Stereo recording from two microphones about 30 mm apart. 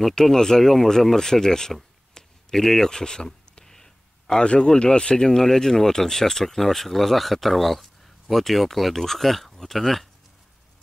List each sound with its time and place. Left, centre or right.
0.2 s speech: centre
2.2 s a sound: left
2.5 s speech: centre
3.6 s a sound: centre
4.4 s speech: left
5.4 s speech: centre